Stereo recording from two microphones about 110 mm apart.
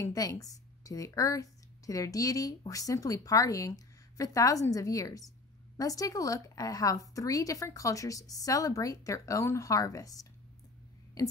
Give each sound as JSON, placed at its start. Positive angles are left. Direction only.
{"t": 0.0, "sound": "a woman's voice", "side_deg": 35}